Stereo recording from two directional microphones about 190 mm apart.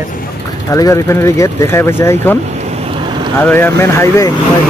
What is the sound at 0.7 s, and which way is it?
Speech, 20° left (ahead or behind).